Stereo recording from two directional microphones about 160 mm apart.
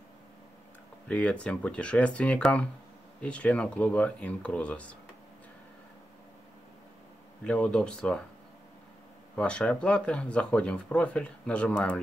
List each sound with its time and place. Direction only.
1.0 s speech: 5° left (ahead or behind)
7.4 s speech: 5° left (ahead or behind)
9.4 s speech: 5° left (ahead or behind)